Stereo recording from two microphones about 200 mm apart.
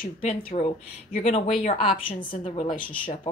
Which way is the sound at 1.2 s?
30° left (ahead or behind).